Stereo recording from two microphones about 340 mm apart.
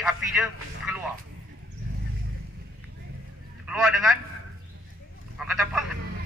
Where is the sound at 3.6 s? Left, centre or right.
Centre.